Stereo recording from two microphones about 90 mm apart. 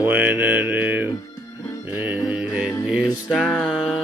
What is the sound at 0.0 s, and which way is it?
Mantra, 20° right (ahead or behind).